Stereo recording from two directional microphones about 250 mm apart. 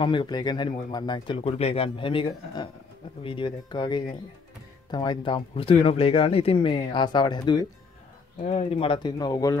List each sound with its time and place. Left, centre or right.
0.0 s speech: centre